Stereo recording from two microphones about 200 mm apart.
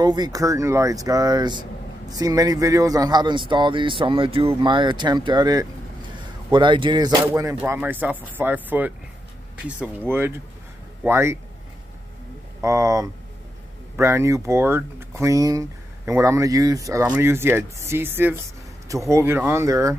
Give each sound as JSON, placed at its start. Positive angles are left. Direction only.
{"t": 0.0, "sound": "a man's voice", "side_deg": -20}
{"t": 12.6, "sound": "speech", "side_deg": -15}